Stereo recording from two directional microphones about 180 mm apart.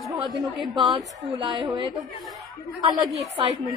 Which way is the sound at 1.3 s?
20° right (ahead or behind).